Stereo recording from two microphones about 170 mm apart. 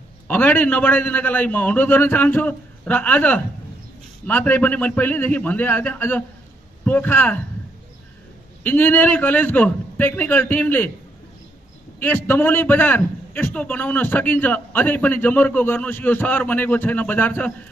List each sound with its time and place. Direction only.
0.3 s a man's voice: 10° left (ahead or behind)
8.6 s a man's voice: 10° left (ahead or behind)
12.0 s a man's voice: 10° left (ahead or behind)